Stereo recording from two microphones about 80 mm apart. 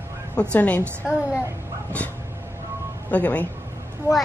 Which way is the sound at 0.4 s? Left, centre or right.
Centre.